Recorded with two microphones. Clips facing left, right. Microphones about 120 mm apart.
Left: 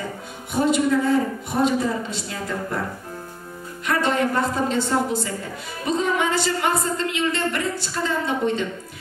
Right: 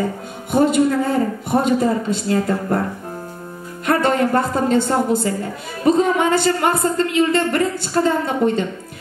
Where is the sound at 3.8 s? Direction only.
50° right (ahead or behind).